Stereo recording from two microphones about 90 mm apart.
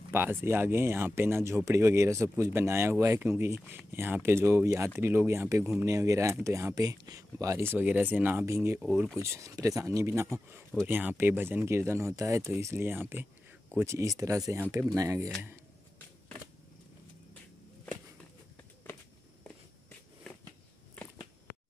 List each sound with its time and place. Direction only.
0.1 s speech: 25° right (ahead or behind)
7.6 s speech: 20° right (ahead or behind)
8.7 s speech: 20° right (ahead or behind)
9.2 s speech: 35° right (ahead or behind)
10.8 s speech: 20° right (ahead or behind); by 15.3 s 40° right (ahead or behind)